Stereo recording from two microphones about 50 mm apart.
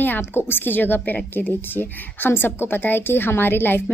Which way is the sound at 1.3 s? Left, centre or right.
Left.